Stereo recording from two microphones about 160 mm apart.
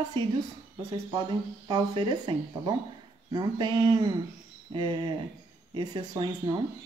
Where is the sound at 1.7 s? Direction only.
30° right (ahead or behind).